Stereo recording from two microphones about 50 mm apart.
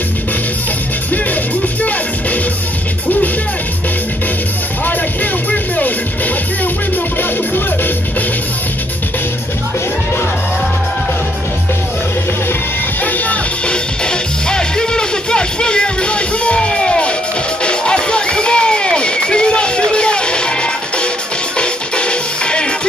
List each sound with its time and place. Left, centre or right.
4.8 s music: left
13.0 s music: left
13.7 s music: centre